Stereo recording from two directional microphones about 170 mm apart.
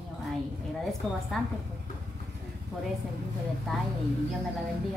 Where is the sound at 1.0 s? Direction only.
Centre (ahead or behind).